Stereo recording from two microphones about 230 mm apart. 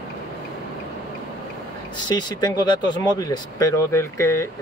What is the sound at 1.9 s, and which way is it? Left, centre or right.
Speech, centre.